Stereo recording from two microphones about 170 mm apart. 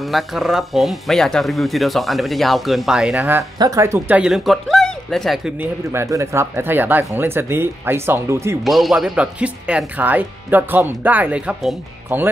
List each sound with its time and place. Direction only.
0.0 s speech: centre (ahead or behind)
3.5 s speech: 20° right (ahead or behind)
4.2 s speech: centre (ahead or behind)
5.9 s speech: 15° right (ahead or behind)
8.6 s speech: centre (ahead or behind)